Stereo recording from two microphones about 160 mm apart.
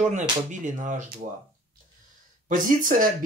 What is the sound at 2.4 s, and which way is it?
Speech, 55° right (ahead or behind).